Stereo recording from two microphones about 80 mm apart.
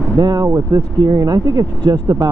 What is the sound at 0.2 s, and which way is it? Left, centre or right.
Speech, right.